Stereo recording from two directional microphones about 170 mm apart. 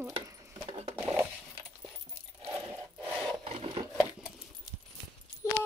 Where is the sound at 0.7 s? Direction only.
35° right (ahead or behind).